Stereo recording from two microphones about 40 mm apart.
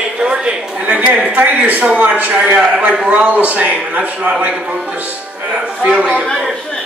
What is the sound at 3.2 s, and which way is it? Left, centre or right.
A man's voice, right.